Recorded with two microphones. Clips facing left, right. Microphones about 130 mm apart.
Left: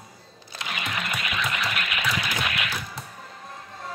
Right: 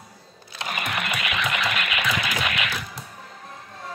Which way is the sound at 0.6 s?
50° right (ahead or behind).